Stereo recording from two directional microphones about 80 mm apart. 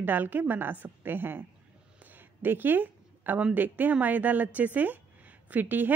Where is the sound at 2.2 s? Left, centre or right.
Right.